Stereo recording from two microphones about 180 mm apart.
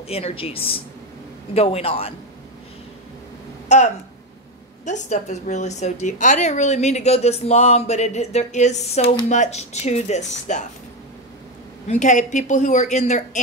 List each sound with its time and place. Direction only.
0.1 s a woman's voice: 30° left (ahead or behind)
3.6 s a woman's voice: 40° left (ahead or behind)
11.9 s a woman's voice: 45° left (ahead or behind)